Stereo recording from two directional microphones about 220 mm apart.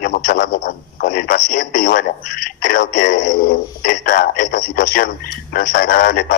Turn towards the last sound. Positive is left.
turn(degrees=40)  # may be behind; listen again after turning